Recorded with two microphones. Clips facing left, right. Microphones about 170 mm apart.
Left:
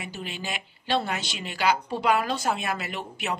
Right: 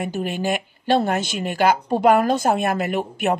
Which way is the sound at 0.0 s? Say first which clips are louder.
Right 12 dB; 50° right (ahead or behind).